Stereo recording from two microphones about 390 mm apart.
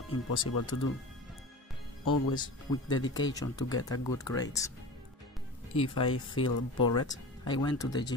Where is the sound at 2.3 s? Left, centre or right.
Centre.